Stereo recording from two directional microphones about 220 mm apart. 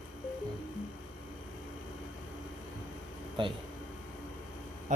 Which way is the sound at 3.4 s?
20° right (ahead or behind).